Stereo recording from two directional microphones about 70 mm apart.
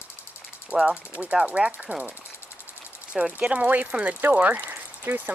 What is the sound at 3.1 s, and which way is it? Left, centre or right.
Speech, centre.